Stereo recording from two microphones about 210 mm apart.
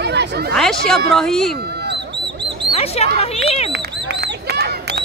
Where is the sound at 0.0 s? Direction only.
55° right (ahead or behind).